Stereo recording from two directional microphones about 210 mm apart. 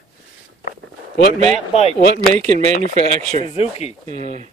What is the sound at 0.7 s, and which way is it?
Walk, 40° left (ahead or behind).